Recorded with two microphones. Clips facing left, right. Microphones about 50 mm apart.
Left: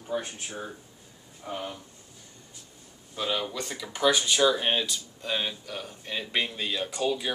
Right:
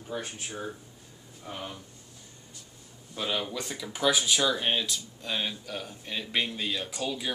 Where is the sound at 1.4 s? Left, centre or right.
Centre.